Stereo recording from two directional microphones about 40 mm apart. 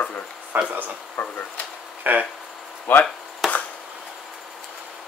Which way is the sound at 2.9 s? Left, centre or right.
Left.